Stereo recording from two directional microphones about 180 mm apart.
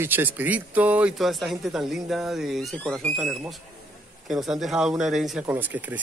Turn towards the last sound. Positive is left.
turn(degrees=-10)  # may be behind; listen again after turning